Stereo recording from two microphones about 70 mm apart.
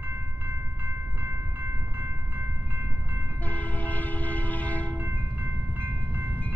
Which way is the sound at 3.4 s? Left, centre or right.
Left.